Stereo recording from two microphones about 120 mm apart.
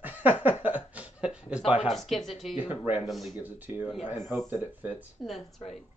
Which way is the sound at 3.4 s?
15° right (ahead or behind).